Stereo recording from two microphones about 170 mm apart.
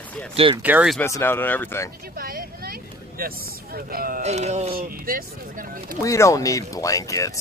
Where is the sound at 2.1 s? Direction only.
60° right (ahead or behind).